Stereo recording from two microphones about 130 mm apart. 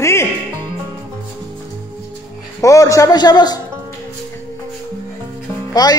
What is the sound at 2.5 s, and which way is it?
A man's voice, 25° left (ahead or behind).